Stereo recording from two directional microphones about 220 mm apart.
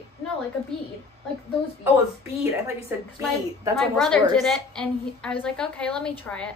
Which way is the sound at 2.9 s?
10° right (ahead or behind).